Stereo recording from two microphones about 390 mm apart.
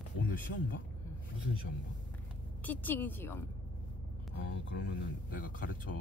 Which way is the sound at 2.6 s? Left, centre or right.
Centre.